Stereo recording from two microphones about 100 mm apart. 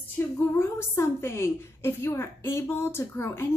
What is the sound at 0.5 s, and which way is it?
A woman's voice, 25° left (ahead or behind).